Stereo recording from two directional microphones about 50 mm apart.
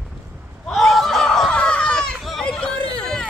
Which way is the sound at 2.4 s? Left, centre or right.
Centre.